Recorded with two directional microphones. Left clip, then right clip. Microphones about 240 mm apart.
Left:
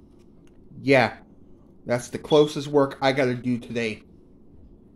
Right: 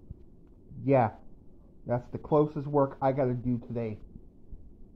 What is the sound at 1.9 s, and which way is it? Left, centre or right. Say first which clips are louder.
Speech: left 6 dB; left.